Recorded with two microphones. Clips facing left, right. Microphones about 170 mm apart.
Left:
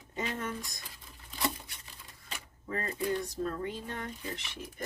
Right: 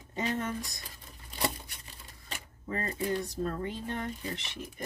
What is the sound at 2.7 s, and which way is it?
Speech, 25° right (ahead or behind).